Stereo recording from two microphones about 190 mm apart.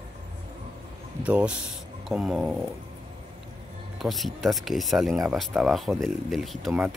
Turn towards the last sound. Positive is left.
turn(degrees=0)  # may be behind; listen again after turning